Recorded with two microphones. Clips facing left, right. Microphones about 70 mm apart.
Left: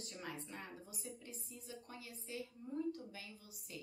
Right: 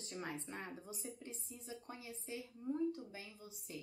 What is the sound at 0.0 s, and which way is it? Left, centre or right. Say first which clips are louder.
A woman's voice: right 3 dB; right.